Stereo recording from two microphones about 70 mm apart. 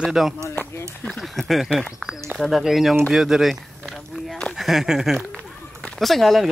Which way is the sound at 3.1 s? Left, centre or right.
Centre.